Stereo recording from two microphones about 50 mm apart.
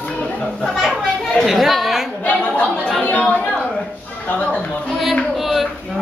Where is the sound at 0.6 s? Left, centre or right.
Centre.